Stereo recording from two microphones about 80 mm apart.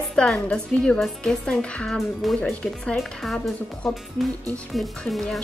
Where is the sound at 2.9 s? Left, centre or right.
Centre.